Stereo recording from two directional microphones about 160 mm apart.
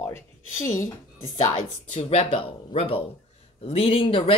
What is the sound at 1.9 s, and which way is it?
Speech, 40° left (ahead or behind).